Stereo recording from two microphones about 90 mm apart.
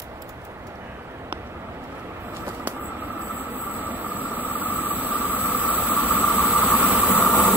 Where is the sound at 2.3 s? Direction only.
25° right (ahead or behind).